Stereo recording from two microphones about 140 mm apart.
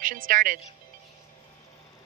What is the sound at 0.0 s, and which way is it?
Speech, 75° right (ahead or behind).